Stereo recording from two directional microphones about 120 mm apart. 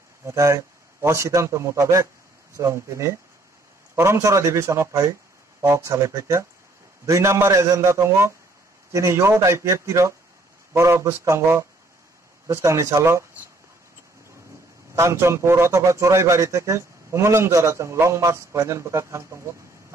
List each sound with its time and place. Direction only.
0.2 s a man's voice: 25° right (ahead or behind)
15.0 s a man's voice: 20° right (ahead or behind)